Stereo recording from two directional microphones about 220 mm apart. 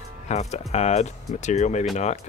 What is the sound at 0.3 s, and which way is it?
Speech, 30° left (ahead or behind).